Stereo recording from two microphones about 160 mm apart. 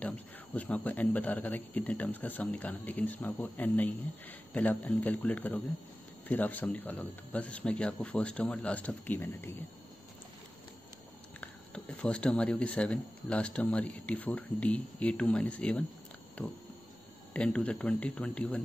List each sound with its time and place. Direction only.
0.6 s speech: 10° left (ahead or behind)
11.4 s speech: 5° left (ahead or behind)